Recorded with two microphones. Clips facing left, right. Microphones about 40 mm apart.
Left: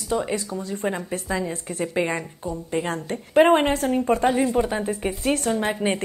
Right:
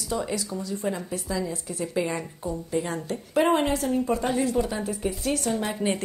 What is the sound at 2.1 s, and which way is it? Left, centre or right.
Speech, centre.